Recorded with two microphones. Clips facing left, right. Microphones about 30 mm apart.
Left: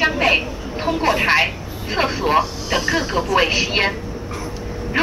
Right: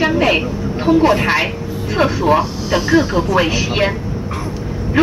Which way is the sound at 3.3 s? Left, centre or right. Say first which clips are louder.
Left 2 dB; left.